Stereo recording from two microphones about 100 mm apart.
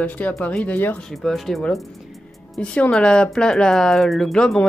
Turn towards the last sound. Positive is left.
turn(degrees=5)  # may be behind; listen again after turning